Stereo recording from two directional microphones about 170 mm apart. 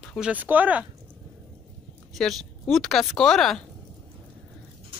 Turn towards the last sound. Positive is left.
turn(degrees=0)  # may be behind; listen again after turning